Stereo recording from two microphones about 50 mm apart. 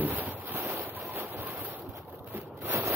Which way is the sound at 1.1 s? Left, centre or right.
Right.